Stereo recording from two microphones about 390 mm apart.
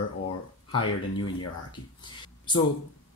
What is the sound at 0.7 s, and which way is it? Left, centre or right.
Speech, left.